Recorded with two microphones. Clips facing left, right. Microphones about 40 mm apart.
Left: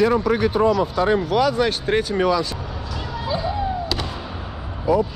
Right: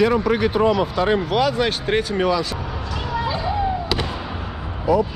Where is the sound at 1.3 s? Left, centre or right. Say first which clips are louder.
Left 1 dB; right.